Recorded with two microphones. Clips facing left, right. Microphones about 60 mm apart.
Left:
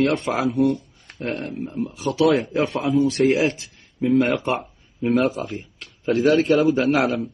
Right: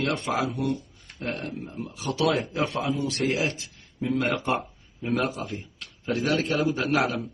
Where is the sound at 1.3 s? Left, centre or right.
Left.